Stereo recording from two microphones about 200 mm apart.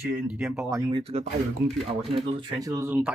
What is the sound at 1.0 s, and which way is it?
Speech, 30° right (ahead or behind).